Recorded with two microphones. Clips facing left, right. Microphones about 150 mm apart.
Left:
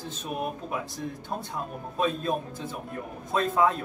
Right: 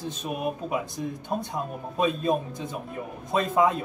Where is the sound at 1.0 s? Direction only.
10° right (ahead or behind).